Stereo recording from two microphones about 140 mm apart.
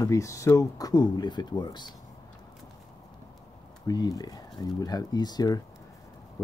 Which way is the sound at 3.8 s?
25° left (ahead or behind).